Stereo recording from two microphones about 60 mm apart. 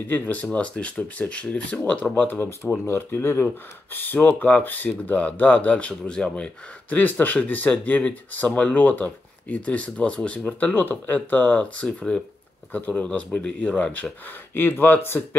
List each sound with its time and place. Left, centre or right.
0.1 s speech: left
0.5 s speech: centre
10.7 s speech: left
14.5 s speech: left